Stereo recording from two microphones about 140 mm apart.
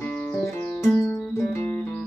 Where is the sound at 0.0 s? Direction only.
15° left (ahead or behind).